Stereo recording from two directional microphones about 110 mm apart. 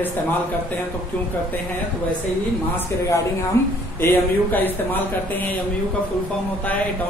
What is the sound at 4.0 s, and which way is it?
Speech, 20° left (ahead or behind).